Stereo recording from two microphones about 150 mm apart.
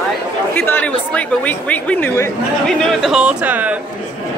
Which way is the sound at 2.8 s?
Centre (ahead or behind).